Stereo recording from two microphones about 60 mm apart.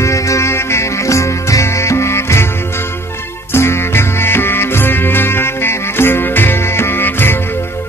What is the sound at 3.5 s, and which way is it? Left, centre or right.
Music, left.